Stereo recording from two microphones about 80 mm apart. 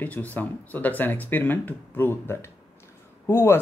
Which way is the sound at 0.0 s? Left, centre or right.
Left.